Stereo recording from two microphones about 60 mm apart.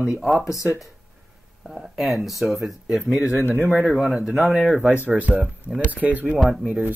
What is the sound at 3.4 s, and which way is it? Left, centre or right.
Speech, left.